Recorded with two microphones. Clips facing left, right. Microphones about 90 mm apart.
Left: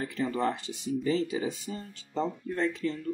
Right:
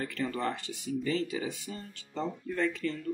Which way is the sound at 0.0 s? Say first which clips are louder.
Left 3 dB; 15° left (ahead or behind).